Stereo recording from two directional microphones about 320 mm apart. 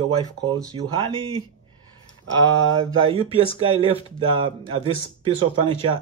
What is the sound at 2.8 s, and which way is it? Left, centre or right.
A man's voice, centre.